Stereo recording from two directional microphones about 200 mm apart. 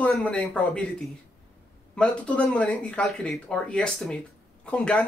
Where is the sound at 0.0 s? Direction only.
5° left (ahead or behind).